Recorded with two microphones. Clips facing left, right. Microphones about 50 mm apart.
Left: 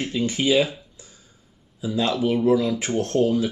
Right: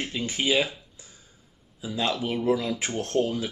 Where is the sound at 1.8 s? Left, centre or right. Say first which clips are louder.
Left 5 dB; centre.